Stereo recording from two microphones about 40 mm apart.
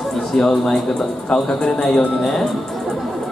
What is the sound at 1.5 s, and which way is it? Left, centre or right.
Speech, left.